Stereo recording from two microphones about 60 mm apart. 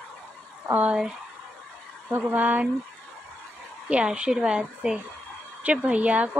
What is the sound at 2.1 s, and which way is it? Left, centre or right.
Speech, right.